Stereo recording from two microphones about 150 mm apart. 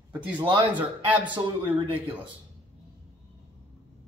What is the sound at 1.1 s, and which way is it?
Speech, 10° right (ahead or behind).